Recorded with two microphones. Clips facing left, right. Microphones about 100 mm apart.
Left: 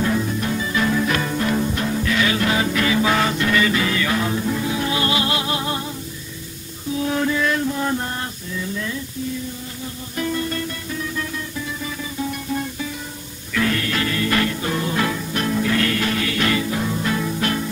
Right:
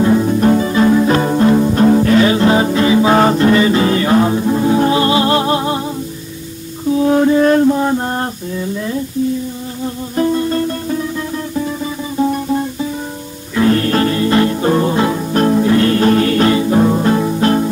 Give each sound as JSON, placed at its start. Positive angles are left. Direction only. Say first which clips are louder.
{"t": 0.0, "sound": "music", "louder": "right 10 dB", "side_deg": -35}
{"t": 3.2, "sound": "music", "louder": "right 9 dB", "side_deg": -35}
{"t": 7.0, "sound": "mantra", "louder": "right 10 dB", "side_deg": -35}
{"t": 7.8, "sound": "a sound", "louder": "right 7 dB", "side_deg": -30}
{"t": 10.1, "sound": "music", "louder": "right 9 dB", "side_deg": -35}
{"t": 13.6, "sound": "music", "louder": "right 9 dB", "side_deg": -35}